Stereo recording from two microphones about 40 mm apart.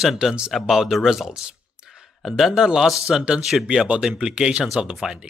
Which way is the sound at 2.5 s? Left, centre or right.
Centre.